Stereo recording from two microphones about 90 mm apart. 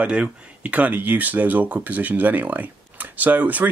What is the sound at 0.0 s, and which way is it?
Speech, 15° right (ahead or behind).